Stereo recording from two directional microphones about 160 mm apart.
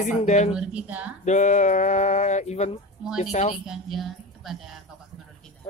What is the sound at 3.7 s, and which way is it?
A woman's voice, centre (ahead or behind).